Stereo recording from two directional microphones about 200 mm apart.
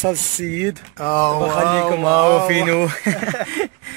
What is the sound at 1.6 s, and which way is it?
Speech, 20° left (ahead or behind).